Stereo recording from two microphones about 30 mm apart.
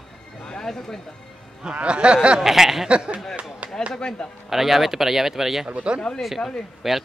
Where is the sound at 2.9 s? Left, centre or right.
Right.